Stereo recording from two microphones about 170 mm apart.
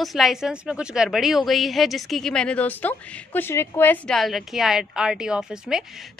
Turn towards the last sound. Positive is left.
turn(degrees=-5)  # may be behind; listen again after turning